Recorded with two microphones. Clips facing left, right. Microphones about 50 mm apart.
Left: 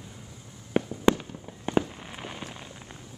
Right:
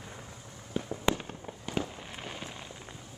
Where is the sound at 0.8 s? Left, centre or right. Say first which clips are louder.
Left 9 dB; left.